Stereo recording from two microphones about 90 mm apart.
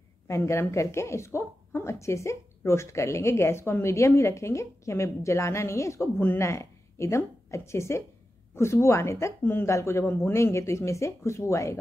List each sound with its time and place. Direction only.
0.3 s a woman's voice: 30° left (ahead or behind)